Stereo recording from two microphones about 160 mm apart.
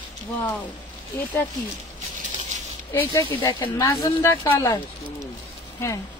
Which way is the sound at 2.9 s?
20° left (ahead or behind).